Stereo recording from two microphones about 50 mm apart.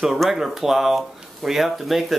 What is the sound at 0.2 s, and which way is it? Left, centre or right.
Speech, centre.